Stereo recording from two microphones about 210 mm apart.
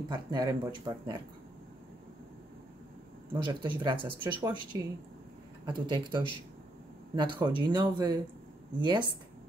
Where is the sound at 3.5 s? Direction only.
20° right (ahead or behind).